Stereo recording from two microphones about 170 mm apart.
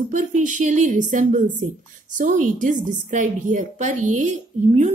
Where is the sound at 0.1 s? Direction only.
45° right (ahead or behind).